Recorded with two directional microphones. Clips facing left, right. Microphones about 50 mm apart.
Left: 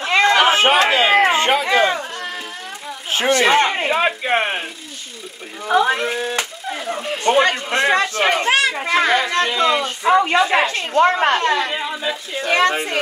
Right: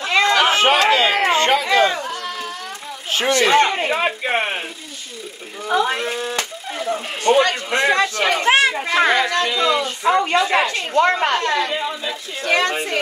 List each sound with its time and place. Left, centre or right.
0.0 s a sound: left
0.6 s a sound: left
3.3 s speech: left
3.9 s speech: left
5.7 s speech: centre
7.7 s speech: left
8.5 s speech: right
9.4 s speech: left
10.0 s speech: left
10.7 s speech: left
11.7 s speech: centre
12.4 s speech: left